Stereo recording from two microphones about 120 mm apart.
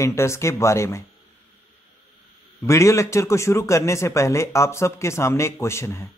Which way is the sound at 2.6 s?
25° left (ahead or behind).